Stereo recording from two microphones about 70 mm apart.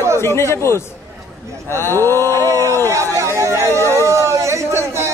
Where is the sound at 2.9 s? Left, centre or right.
Right.